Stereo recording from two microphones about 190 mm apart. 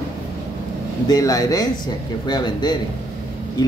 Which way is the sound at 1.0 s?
20° left (ahead or behind).